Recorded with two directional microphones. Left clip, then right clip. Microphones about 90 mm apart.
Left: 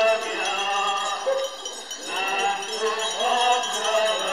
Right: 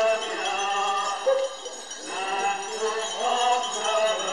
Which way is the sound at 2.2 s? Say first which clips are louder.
Left 3 dB; 20° left (ahead or behind).